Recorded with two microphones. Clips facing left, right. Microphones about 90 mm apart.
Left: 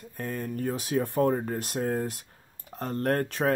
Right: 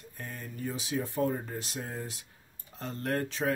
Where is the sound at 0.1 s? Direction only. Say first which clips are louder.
Left 10 dB; 50° left (ahead or behind).